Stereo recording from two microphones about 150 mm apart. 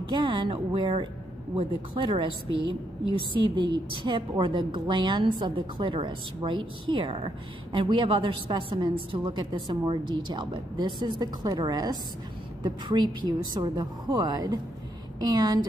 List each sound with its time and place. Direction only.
0.1 s a woman's voice: 30° right (ahead or behind)